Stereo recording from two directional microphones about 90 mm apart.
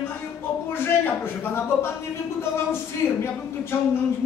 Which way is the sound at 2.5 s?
30° left (ahead or behind).